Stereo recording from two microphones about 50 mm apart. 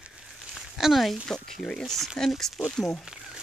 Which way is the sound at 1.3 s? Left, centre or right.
Centre.